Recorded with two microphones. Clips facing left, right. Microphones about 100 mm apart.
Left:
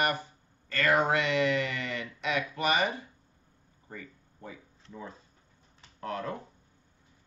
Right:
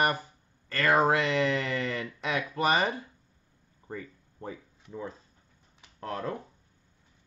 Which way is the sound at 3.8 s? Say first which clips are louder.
Right 5 dB; 35° right (ahead or behind).